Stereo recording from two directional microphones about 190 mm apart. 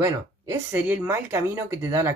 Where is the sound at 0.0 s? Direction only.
15° right (ahead or behind).